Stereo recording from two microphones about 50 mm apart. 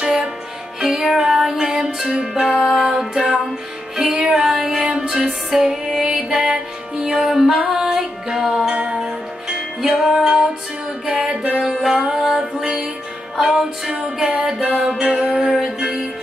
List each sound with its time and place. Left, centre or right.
0.0 s music: centre
0.7 s music: centre
5.7 s music: centre
7.2 s music: centre
8.6 s music: right
11.4 s music: centre
11.7 s music: centre
12.0 s music: centre
13.4 s music: centre
15.3 s music: centre